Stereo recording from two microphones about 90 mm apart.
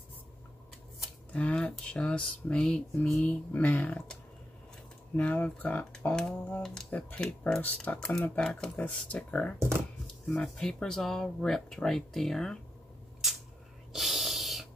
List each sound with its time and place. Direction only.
1.3 s speech: 15° left (ahead or behind)
6.1 s speech: 5° left (ahead or behind)
7.2 s speech: 5° left (ahead or behind)
7.6 s speech: 20° left (ahead or behind)
13.9 s snort: centre (ahead or behind)